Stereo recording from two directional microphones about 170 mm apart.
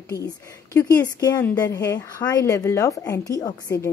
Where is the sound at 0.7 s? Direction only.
20° left (ahead or behind).